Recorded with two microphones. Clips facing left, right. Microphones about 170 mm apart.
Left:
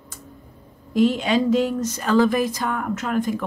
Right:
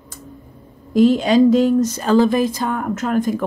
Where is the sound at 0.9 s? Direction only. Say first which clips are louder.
Right 6 dB; 40° right (ahead or behind).